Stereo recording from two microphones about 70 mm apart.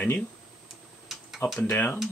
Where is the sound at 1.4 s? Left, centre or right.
Left.